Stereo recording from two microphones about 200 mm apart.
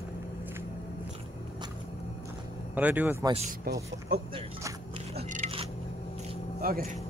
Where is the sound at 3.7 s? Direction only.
55° right (ahead or behind).